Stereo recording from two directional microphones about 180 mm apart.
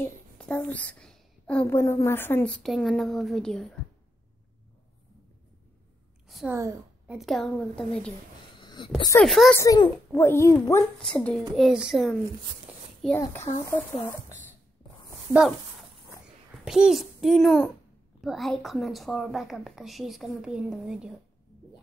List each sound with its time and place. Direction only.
0.0 s a woman's voice: 10° left (ahead or behind)
6.2 s a sound: centre (ahead or behind)
6.5 s a woman's voice: 15° right (ahead or behind)
7.2 s a woman's voice: centre (ahead or behind)
8.5 s speech: 25° left (ahead or behind)
9.2 s a woman's voice: centre (ahead or behind)
9.6 s a woman's voice: 15° left (ahead or behind)
11.1 s a woman's voice: centre (ahead or behind)
13.2 s a woman's voice: 15° left (ahead or behind)
15.1 s a sound: centre (ahead or behind)
16.6 s a woman's voice: 5° right (ahead or behind)